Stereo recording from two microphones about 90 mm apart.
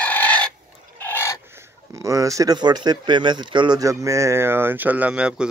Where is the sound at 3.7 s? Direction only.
35° right (ahead or behind); by 5.4 s 10° right (ahead or behind).